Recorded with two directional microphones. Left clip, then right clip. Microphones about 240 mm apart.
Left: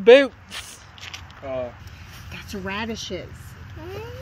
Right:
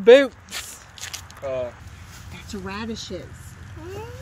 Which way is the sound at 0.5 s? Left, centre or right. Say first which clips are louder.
Right 2 dB; right.